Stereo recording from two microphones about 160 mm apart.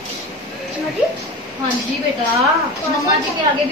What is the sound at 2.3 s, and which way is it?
Speech, 20° right (ahead or behind).